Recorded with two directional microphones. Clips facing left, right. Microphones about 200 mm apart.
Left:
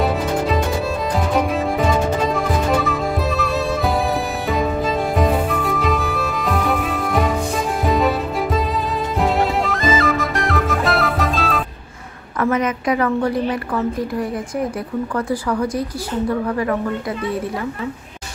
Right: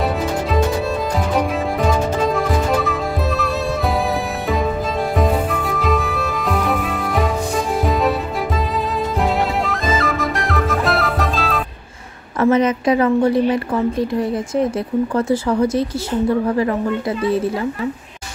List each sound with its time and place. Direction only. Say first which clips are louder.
1.3 s music: left 1 dB; centre (ahead or behind)
5.1 s music: right 2 dB; centre (ahead or behind)
9.2 s music: left 2 dB; centre (ahead or behind)
12.4 s a woman's voice: right 4 dB; 25° right (ahead or behind)